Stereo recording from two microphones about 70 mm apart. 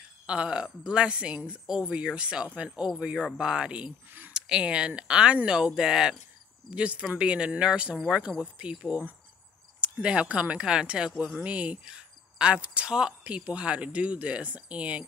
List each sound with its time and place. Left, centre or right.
0.3 s speech: centre